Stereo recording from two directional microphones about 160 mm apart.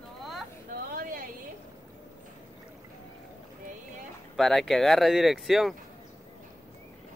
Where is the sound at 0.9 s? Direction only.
60° right (ahead or behind).